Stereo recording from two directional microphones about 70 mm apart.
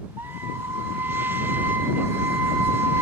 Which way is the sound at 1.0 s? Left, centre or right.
Right.